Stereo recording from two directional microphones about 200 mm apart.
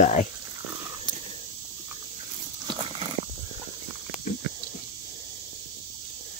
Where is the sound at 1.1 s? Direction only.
20° left (ahead or behind).